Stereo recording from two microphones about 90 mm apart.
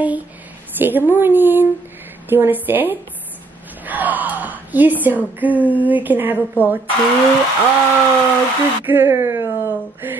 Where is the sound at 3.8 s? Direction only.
20° right (ahead or behind).